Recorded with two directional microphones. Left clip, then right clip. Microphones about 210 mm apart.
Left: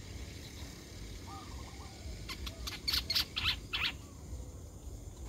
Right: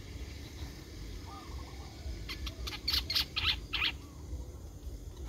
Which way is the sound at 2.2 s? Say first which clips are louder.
Right 1 dB; centre (ahead or behind).